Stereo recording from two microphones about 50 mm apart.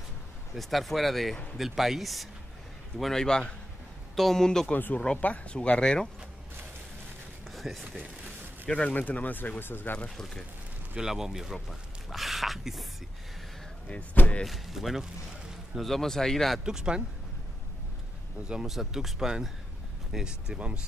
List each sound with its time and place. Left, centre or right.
0.6 s speech: centre
3.0 s a man's voice: centre
4.7 s speech: left; by 6.0 s centre
7.5 s a sound: centre
8.6 s speech: left
8.9 s speech: left
9.9 s a man's voice: centre
11.0 s speech: centre
13.8 s speech: left
14.4 s speech: centre
16.6 s speech: centre
18.5 s speech: centre